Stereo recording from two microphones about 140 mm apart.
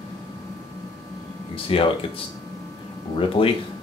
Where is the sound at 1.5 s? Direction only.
40° left (ahead or behind).